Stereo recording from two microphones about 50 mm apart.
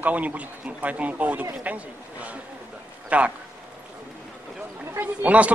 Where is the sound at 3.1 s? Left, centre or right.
Right.